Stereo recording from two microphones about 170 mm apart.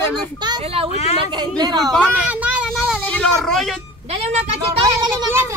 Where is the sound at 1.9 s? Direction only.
5° left (ahead or behind).